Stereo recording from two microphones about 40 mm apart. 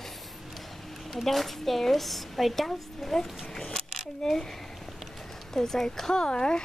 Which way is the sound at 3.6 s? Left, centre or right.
Left.